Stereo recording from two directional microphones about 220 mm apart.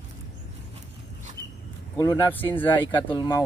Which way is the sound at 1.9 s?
15° left (ahead or behind).